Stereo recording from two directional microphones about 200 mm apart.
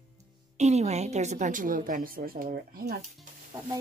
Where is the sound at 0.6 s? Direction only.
35° right (ahead or behind); by 3.0 s 50° right (ahead or behind).